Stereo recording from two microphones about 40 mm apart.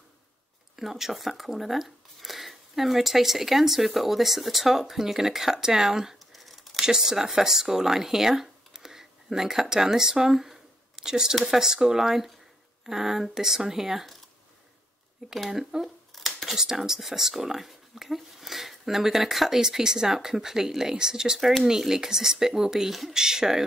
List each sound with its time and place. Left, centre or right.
0.7 s speech: centre
6.1 s crumpling: centre
6.8 s speech: centre
11.3 s speech: centre
11.6 s speech: centre
15.2 s speech: centre
16.1 s a sound: centre
16.4 s speech: centre